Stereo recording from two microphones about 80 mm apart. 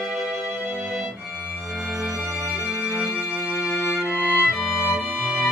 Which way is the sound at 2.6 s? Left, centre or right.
Centre.